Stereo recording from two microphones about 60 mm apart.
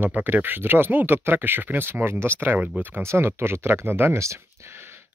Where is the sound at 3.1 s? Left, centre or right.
Right.